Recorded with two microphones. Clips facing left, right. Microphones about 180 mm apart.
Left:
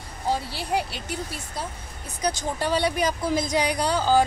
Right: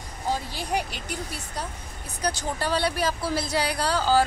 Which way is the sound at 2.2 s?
15° left (ahead or behind).